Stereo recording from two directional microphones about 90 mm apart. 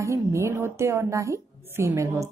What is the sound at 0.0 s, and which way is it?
A woman's voice, 30° right (ahead or behind).